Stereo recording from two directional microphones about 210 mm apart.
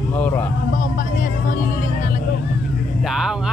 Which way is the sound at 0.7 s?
40° left (ahead or behind).